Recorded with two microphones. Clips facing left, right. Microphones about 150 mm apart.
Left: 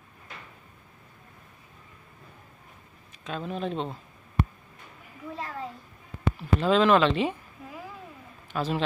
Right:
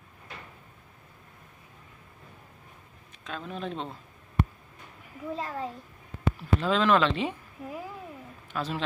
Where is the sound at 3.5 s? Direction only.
Centre (ahead or behind).